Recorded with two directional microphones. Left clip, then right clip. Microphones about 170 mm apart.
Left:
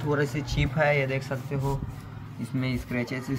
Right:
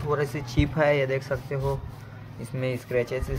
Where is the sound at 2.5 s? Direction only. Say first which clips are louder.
Right 5 dB; 50° right (ahead or behind).